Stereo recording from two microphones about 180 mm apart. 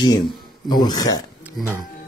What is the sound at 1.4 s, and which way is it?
Speech, 5° right (ahead or behind).